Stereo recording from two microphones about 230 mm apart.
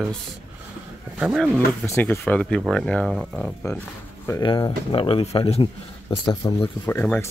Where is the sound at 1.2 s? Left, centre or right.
Centre.